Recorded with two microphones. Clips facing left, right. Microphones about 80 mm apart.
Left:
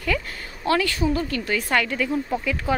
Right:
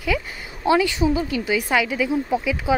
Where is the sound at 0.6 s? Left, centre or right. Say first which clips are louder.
Right 3 dB; centre.